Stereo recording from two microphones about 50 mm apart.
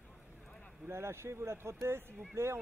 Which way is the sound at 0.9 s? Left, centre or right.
Right.